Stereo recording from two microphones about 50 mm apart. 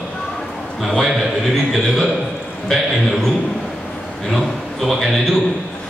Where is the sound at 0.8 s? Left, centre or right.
Centre.